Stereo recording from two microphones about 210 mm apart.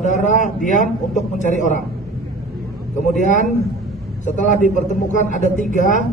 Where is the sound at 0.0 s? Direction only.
35° left (ahead or behind).